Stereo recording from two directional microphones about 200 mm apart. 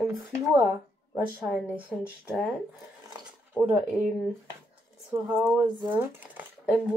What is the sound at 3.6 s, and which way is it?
Speech, 5° right (ahead or behind).